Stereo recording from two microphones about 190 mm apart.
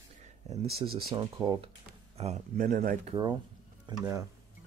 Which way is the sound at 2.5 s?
50° right (ahead or behind).